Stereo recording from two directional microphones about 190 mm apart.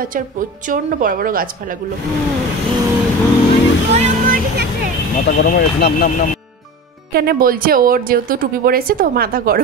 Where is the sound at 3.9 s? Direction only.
35° right (ahead or behind).